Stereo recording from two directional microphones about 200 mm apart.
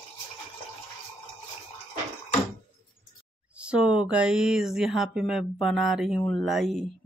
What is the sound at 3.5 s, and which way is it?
Speech, 5° right (ahead or behind).